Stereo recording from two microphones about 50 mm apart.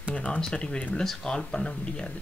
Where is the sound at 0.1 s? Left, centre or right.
Left.